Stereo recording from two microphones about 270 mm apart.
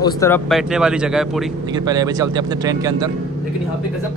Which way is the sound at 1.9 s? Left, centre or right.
Centre.